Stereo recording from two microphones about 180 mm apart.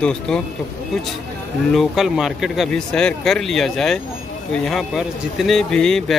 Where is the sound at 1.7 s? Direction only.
Centre (ahead or behind).